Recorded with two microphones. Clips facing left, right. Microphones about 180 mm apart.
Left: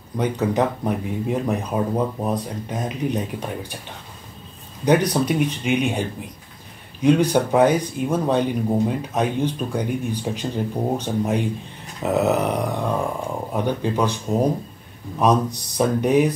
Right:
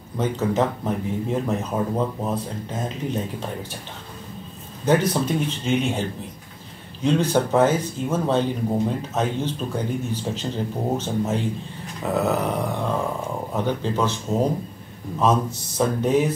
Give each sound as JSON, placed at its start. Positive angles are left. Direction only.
{"t": 0.2, "sound": "speech", "side_deg": 15}
{"t": 4.8, "sound": "speech", "side_deg": 15}
{"t": 12.0, "sound": "grunt", "side_deg": 20}
{"t": 13.5, "sound": "speech", "side_deg": 15}
{"t": 15.1, "sound": "speech", "side_deg": 15}